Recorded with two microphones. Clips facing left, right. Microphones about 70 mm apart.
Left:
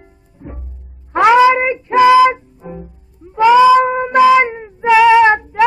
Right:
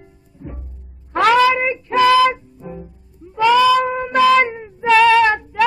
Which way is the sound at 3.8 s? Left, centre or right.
Left.